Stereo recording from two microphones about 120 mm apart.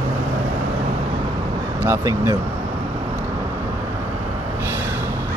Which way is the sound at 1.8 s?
25° right (ahead or behind).